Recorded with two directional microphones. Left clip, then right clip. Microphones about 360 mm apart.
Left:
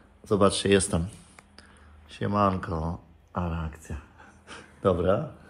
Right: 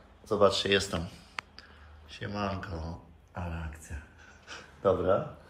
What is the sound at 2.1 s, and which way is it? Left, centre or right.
Speech, centre.